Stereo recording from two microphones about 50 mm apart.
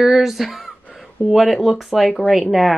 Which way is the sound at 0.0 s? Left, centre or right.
Centre.